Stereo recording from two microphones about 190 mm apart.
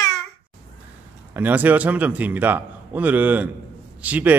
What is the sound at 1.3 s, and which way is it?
A man's voice, 10° right (ahead or behind).